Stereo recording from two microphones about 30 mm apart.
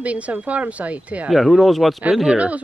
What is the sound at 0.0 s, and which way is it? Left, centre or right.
Speech, right.